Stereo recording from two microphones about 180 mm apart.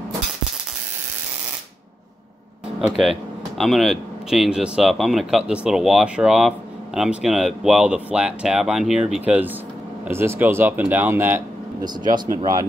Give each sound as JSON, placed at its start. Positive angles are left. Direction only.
{"t": 3.0, "sound": "speech", "side_deg": 0}
{"t": 11.8, "sound": "speech", "side_deg": -25}